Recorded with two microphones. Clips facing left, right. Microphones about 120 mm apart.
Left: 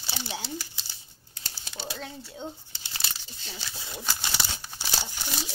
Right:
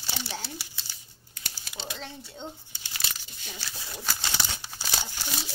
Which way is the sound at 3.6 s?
20° left (ahead or behind).